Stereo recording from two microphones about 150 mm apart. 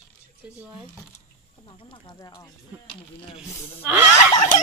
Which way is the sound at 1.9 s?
25° left (ahead or behind).